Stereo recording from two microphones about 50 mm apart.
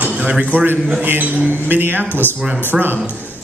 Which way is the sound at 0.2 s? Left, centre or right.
Right.